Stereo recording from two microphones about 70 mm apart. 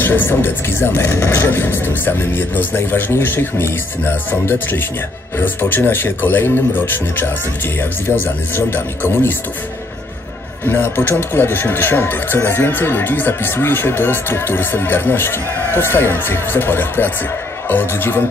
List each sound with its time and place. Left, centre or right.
0.0 s speech: left
8.5 s speech: left
10.6 s speech: left